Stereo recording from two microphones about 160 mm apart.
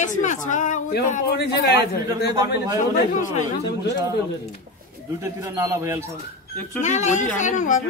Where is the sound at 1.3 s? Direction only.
90° left.